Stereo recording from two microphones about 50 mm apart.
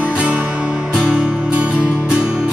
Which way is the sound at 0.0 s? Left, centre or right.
Centre.